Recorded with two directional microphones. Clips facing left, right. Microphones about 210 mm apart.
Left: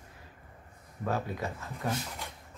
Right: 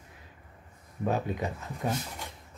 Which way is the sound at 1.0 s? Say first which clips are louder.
Right 3 dB; 20° right (ahead or behind).